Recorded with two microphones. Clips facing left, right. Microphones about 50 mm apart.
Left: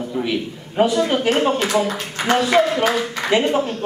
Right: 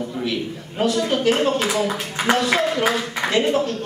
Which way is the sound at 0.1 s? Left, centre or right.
Centre.